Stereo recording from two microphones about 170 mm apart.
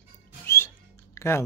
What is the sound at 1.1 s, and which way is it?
Typing, 15° left (ahead or behind).